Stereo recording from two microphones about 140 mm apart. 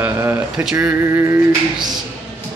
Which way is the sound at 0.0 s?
15° right (ahead or behind).